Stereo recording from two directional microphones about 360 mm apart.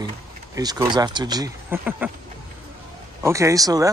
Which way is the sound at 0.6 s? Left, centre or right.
Centre.